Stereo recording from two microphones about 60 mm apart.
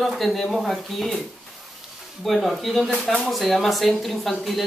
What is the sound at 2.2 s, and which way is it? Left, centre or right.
A woman's voice, centre.